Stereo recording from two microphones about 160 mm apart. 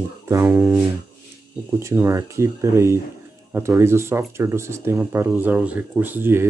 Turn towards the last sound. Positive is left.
turn(degrees=-15)  # may be behind; listen again after turning